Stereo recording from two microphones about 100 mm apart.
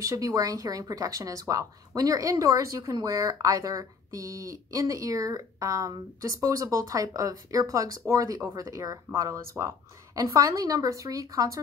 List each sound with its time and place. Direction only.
0.0 s speech: 35° right (ahead or behind)